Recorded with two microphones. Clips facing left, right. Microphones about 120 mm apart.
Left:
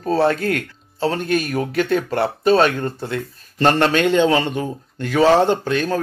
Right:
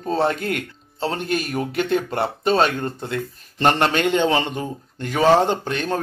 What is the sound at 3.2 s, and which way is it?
Speech, 20° right (ahead or behind).